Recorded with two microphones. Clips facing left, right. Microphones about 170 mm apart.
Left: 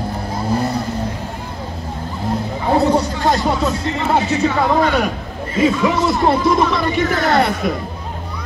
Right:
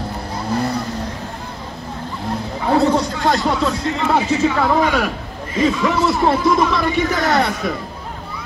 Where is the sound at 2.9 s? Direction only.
10° left (ahead or behind).